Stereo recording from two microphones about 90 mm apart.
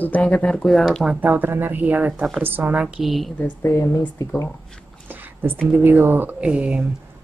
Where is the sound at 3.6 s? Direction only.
35° left (ahead or behind).